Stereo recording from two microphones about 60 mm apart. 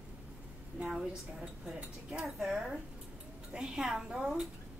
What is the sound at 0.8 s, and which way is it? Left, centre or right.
Speech, centre.